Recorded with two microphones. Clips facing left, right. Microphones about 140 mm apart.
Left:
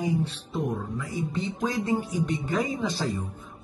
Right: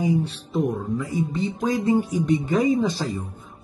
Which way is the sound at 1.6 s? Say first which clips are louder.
Right 6 dB; 20° right (ahead or behind).